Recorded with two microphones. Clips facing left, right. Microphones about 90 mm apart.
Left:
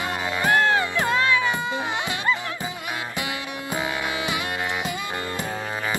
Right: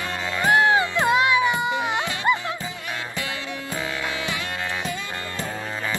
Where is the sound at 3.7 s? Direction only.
20° left (ahead or behind).